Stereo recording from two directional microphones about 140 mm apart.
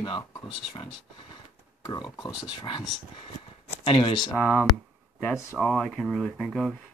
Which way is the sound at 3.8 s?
35° left (ahead or behind).